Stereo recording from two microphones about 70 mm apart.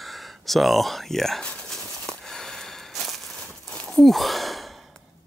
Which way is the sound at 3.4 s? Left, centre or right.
Centre.